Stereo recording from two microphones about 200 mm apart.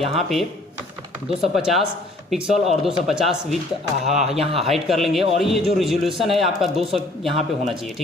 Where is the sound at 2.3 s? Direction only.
Centre (ahead or behind).